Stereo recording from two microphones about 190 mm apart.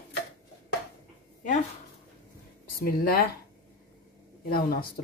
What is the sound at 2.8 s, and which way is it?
Speech, 50° left (ahead or behind).